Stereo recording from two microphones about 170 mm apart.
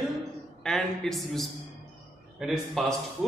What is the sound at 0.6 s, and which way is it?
A man's voice, 5° left (ahead or behind).